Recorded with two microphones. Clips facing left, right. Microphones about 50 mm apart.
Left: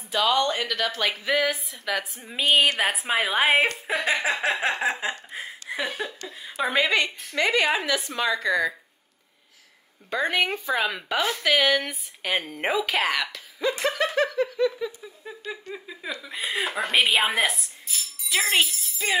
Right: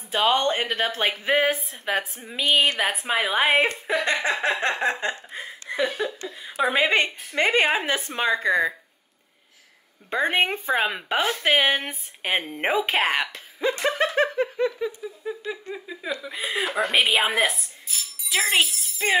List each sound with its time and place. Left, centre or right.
0.1 s speech: right
2.2 s a woman's voice: centre
5.3 s chuckle: centre
6.4 s a woman's voice: centre
6.8 s speech: right
10.0 s speech: right
15.2 s a woman's voice: centre
18.7 s jingle bell: right